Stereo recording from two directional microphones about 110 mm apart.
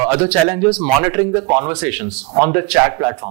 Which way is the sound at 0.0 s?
20° right (ahead or behind).